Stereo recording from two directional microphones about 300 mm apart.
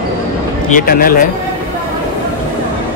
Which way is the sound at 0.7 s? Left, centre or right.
Left.